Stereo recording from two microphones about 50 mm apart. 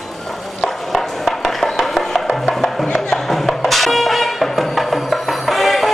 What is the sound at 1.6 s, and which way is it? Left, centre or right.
Music, centre.